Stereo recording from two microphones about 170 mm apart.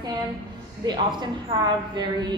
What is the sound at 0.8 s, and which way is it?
Speech, 25° right (ahead or behind).